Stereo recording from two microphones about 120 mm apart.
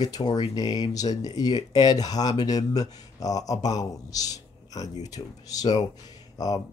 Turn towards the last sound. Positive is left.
turn(degrees=35)  # may be behind; listen again after turning